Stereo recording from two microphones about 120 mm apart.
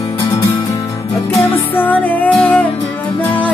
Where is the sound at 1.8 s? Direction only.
15° left (ahead or behind).